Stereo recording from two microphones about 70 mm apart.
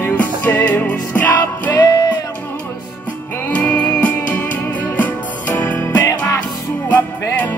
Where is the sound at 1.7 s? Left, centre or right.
Left.